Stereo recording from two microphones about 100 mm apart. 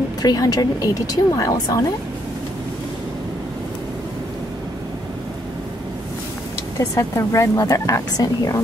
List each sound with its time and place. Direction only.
0.2 s speech: 40° left (ahead or behind)
7.0 s speech: 30° left (ahead or behind)